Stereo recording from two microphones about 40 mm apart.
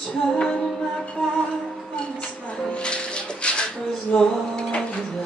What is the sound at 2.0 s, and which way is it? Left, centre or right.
Speech, left.